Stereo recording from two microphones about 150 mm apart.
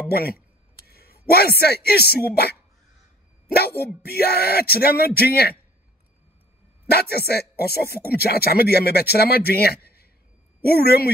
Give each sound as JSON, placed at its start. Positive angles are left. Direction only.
{"t": 0.1, "sound": "speech", "side_deg": 90}
{"t": 6.9, "sound": "speech", "side_deg": 90}